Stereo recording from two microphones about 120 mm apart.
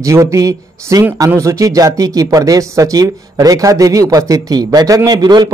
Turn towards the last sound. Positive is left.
turn(degrees=-35)  # may be behind; listen again after turning